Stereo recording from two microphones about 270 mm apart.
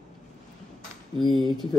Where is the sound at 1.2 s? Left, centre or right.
Centre.